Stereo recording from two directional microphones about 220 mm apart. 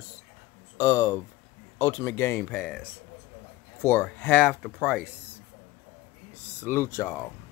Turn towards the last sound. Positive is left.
turn(degrees=10)  # may be behind; listen again after turning